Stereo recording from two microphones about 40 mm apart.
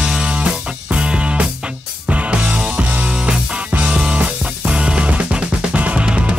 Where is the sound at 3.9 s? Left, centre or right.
Right.